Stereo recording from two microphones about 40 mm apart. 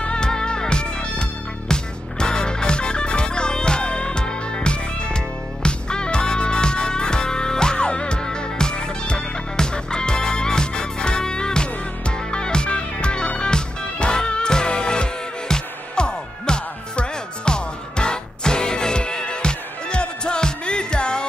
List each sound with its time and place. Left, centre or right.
0.1 s music: centre